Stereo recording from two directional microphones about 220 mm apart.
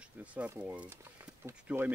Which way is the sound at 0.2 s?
5° right (ahead or behind).